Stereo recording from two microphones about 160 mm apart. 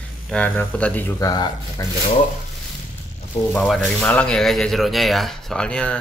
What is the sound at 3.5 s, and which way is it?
Speech, 5° left (ahead or behind).